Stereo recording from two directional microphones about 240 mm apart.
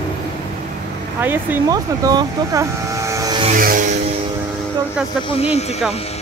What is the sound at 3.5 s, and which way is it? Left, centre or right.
Vehicle, right.